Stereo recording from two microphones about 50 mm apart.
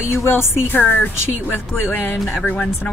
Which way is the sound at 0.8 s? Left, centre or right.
Left.